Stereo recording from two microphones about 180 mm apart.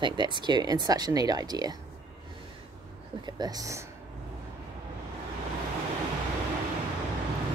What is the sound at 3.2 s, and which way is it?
Speech, 20° right (ahead or behind).